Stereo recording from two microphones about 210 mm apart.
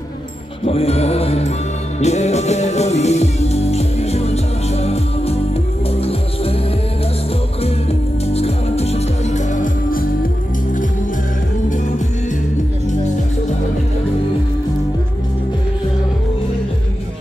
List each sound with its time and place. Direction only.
0.7 s music: 30° left (ahead or behind)
8.3 s music: 30° left (ahead or behind)